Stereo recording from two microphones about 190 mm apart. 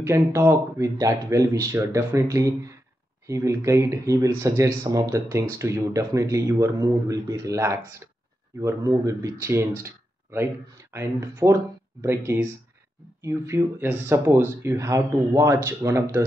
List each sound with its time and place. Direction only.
0.0 s speech: 15° right (ahead or behind)